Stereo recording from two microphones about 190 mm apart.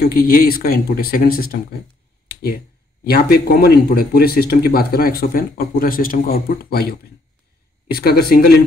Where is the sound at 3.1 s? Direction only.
55° left (ahead or behind).